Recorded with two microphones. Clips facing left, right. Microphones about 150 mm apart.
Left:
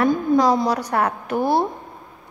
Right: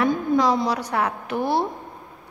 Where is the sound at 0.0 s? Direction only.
40° left (ahead or behind).